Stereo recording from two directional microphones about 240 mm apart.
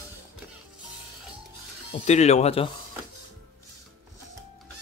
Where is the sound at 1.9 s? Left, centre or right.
Left.